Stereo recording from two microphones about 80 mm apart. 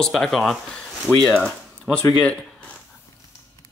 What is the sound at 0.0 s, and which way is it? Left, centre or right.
Speech, centre.